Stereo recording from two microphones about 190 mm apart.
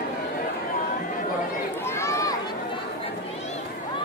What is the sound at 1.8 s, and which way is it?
Run, 15° left (ahead or behind).